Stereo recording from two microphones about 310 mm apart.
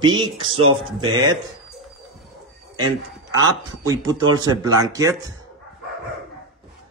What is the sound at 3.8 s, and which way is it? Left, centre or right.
Speech, centre.